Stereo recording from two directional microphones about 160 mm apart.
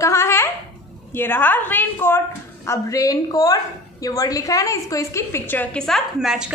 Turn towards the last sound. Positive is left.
turn(degrees=0)  # may be behind; listen again after turning